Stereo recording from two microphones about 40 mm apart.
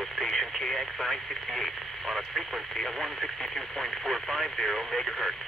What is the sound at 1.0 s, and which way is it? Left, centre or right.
Speech, centre.